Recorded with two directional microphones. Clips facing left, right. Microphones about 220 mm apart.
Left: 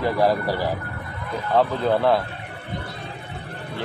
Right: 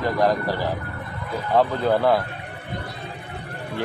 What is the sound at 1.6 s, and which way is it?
Speech, centre (ahead or behind).